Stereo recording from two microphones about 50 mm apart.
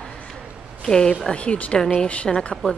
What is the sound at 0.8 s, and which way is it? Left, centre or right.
A woman's voice, centre.